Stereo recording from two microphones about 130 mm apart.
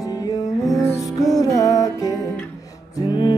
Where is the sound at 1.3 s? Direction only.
25° left (ahead or behind).